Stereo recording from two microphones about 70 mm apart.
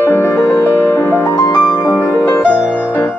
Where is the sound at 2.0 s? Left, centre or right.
Left.